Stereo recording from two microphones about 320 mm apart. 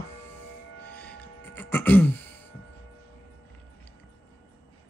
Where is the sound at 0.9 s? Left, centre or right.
Centre.